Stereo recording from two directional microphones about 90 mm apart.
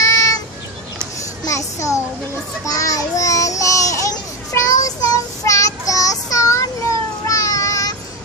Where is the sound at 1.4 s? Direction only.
35° left (ahead or behind).